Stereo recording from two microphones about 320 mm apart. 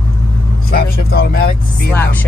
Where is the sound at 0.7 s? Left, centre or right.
Left.